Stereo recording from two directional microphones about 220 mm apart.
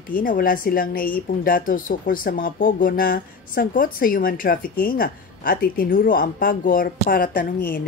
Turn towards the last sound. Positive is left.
turn(degrees=40)  # may be behind; listen again after turning